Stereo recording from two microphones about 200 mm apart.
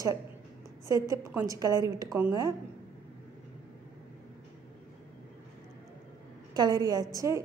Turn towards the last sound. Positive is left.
turn(degrees=-20)  # may be behind; listen again after turning